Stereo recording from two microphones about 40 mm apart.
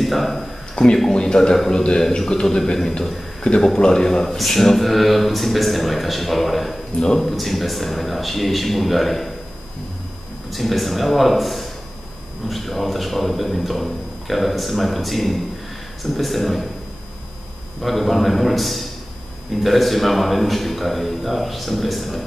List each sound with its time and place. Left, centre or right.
0.0 s a man's voice: centre
0.8 s a man's voice: left; by 9.3 s centre
10.5 s speech: centre
17.8 s speech: centre